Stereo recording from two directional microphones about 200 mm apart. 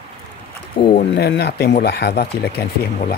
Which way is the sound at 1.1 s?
55° left (ahead or behind).